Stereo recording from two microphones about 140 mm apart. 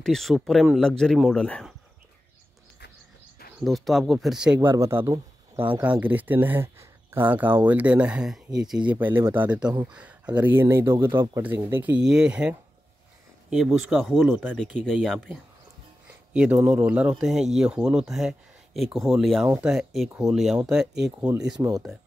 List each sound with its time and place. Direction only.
0.0 s speech: centre (ahead or behind)
3.6 s speech: centre (ahead or behind)
4.6 s speech: 20° right (ahead or behind)
8.9 s speech: 15° right (ahead or behind)
14.6 s speech: 5° left (ahead or behind)
16.3 s speech: 5° right (ahead or behind)
19.4 s speech: 15° right (ahead or behind)
19.7 s speech: centre (ahead or behind)